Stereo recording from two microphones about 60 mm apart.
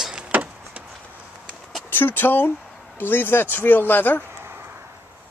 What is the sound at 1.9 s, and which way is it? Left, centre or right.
Speech, left.